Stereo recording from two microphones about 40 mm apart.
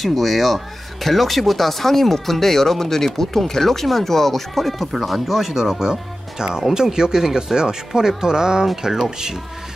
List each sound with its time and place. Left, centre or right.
0.0 s speech: centre
5.5 s speech: centre